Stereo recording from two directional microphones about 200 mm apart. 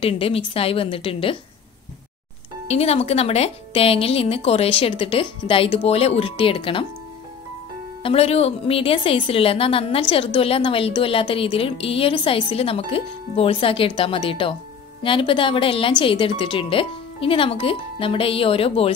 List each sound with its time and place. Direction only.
0.0 s a woman's voice: 30° left (ahead or behind)
2.7 s a woman's voice: 30° left (ahead or behind)
8.0 s a woman's voice: 30° left (ahead or behind)